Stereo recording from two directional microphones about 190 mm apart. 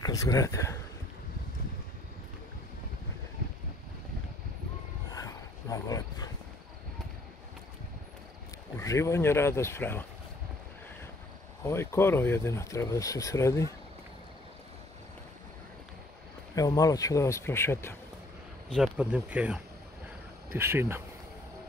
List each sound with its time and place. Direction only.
0.0 s speech: 20° left (ahead or behind)
5.1 s a sound: 20° left (ahead or behind)
8.7 s speech: 15° left (ahead or behind)
11.6 s speech: 15° left (ahead or behind)
16.5 s speech: 20° left (ahead or behind)
18.7 s speech: 5° right (ahead or behind)